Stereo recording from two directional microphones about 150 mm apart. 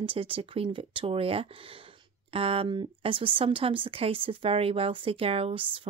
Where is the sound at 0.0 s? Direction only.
35° right (ahead or behind).